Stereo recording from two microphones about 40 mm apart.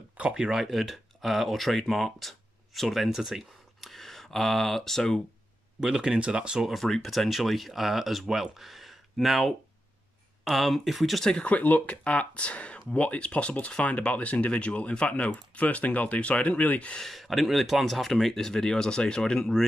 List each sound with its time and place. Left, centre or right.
0.7 s speech: centre
3.1 s speech: centre
3.9 s speech: centre
5.8 s speech: centre
6.6 s speech: centre
11.4 s speech: left
17.0 s speech: centre